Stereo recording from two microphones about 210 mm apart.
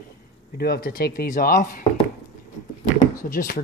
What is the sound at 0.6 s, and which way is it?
Speech, 45° left (ahead or behind).